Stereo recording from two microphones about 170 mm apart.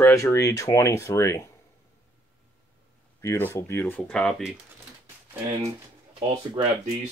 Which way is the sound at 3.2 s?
15° left (ahead or behind).